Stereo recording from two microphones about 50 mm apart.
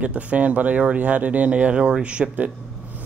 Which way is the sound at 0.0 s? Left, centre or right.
Right.